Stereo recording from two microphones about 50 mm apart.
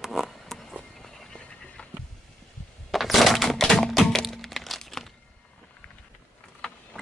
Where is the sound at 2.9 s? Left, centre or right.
Centre.